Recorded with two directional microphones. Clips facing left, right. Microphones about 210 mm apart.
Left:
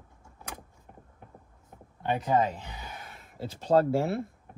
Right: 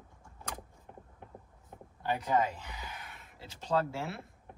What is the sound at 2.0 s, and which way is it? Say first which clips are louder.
Speech: left 4 dB; 25° left (ahead or behind).